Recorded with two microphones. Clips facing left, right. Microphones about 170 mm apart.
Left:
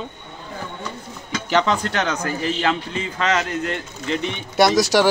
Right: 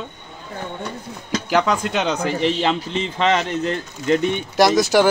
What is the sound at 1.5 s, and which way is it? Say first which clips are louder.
Speech: even; 5° right (ahead or behind).